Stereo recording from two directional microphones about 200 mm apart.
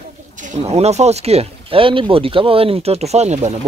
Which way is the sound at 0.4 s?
35° right (ahead or behind).